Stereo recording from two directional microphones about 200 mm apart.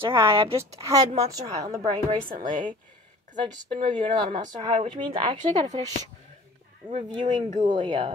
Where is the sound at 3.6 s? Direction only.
25° right (ahead or behind).